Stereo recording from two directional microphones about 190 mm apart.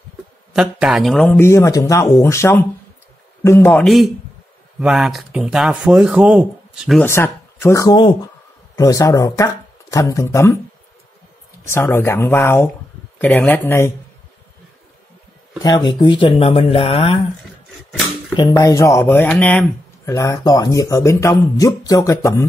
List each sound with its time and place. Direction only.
0.5 s speech: 5° right (ahead or behind)
7.0 s speech: 15° left (ahead or behind)
11.6 s speech: 10° left (ahead or behind)
15.6 s speech: 20° left (ahead or behind)
18.3 s speech: 20° left (ahead or behind); by 19.6 s 5° left (ahead or behind)
20.1 s speech: 15° left (ahead or behind)